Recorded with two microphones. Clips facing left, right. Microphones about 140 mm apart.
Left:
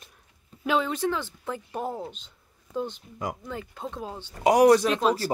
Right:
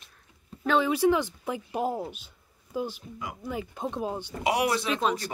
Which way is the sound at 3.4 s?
15° right (ahead or behind).